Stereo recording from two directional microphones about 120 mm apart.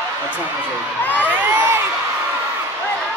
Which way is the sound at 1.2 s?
20° right (ahead or behind).